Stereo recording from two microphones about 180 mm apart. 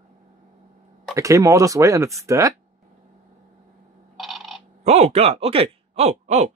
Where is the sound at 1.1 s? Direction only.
15° right (ahead or behind).